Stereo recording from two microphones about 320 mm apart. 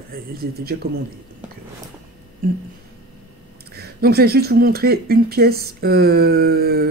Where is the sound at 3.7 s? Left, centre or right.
Right.